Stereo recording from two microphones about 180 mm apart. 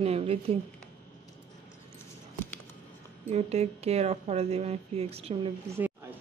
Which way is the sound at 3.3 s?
35° right (ahead or behind).